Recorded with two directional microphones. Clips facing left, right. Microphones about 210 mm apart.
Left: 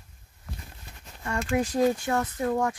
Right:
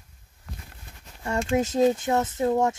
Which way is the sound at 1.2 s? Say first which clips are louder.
Right 3 dB; 25° right (ahead or behind).